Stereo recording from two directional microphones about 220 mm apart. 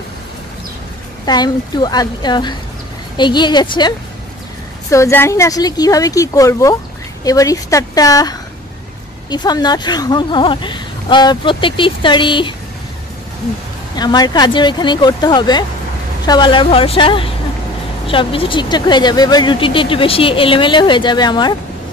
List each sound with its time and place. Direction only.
1.2 s speech: 20° left (ahead or behind)
13.9 s speech: 20° left (ahead or behind)